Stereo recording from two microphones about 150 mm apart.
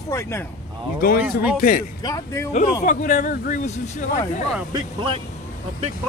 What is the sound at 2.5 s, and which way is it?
Speech, 55° left (ahead or behind).